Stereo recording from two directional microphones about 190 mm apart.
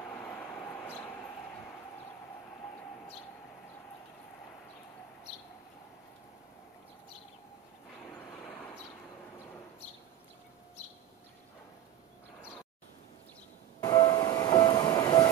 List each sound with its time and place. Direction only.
13.8 s train: 25° left (ahead or behind)